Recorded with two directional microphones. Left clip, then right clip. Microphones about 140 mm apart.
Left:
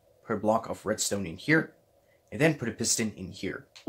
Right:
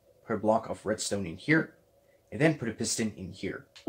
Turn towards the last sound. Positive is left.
turn(degrees=25)  # may be behind; listen again after turning